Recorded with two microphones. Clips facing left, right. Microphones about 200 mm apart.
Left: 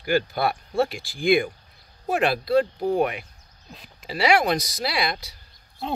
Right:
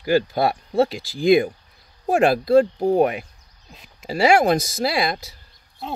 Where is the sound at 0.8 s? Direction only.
90° right.